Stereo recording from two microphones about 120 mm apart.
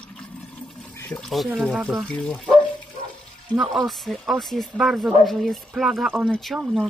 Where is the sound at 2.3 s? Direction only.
5° left (ahead or behind).